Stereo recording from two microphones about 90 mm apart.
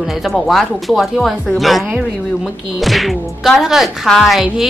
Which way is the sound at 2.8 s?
Centre (ahead or behind).